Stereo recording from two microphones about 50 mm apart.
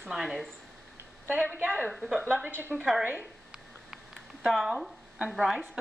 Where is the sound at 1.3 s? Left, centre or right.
Right.